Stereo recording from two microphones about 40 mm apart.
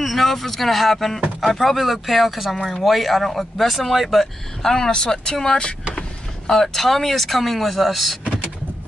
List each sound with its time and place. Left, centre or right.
0.0 s speech: centre
2.5 s speech: centre
4.6 s speech: centre